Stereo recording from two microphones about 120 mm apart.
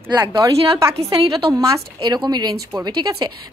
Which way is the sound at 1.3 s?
30° right (ahead or behind).